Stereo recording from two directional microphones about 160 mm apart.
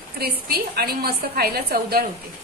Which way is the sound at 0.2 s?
75° right (ahead or behind).